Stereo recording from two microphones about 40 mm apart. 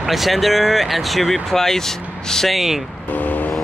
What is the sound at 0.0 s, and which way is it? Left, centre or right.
Speech, centre.